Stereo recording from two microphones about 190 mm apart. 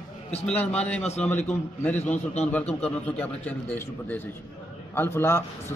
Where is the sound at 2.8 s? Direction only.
5° left (ahead or behind).